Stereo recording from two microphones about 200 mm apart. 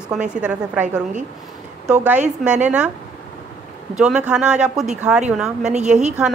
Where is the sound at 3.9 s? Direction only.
5° right (ahead or behind).